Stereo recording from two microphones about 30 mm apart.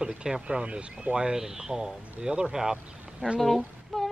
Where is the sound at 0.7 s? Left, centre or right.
Right.